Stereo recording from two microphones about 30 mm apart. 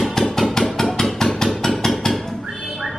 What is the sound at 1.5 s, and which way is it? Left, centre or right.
Vehicle, centre.